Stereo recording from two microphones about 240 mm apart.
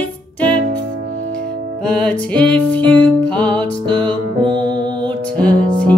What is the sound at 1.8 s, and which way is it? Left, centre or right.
Music, centre.